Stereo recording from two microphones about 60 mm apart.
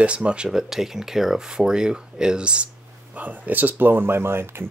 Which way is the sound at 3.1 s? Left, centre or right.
Right.